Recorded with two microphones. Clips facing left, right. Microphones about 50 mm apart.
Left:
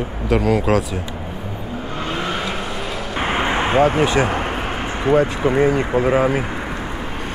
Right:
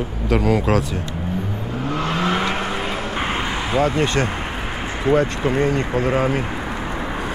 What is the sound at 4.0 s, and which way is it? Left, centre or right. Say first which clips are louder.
Speech: left 3 dB; centre.